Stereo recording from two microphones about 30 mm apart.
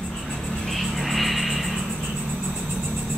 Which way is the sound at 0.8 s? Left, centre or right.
Centre.